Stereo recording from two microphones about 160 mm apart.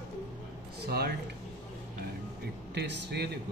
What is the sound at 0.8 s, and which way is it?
Speech, 80° right.